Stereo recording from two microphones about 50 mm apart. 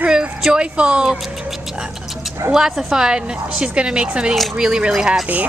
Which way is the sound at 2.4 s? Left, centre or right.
Right.